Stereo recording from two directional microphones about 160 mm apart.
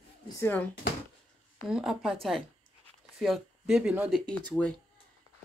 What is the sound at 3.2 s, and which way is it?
Speech, centre (ahead or behind).